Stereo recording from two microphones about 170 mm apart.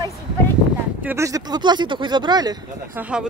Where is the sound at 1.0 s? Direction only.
15° right (ahead or behind).